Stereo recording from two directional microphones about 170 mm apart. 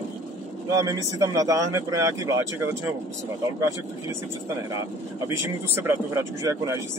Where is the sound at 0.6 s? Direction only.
20° right (ahead or behind).